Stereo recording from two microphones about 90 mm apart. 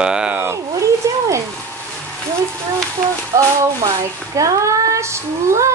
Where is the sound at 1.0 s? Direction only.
35° right (ahead or behind).